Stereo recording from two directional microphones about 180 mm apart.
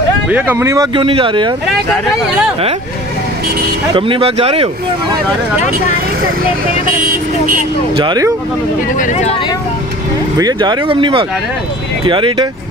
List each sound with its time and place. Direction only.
0.3 s speech: 10° right (ahead or behind)
0.9 s speech: 30° right (ahead or behind)
3.9 s speech: 30° right (ahead or behind)
7.0 s speech: 50° right (ahead or behind)
7.9 s speech: 25° right (ahead or behind)
8.9 s speech: 40° left (ahead or behind)
10.3 s speech: 20° right (ahead or behind)